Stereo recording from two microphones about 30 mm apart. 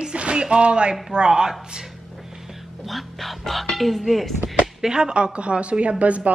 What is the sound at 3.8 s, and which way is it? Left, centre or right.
Music, centre.